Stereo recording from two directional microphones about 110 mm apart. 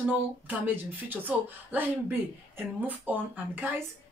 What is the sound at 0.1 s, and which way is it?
Speech, 15° right (ahead or behind).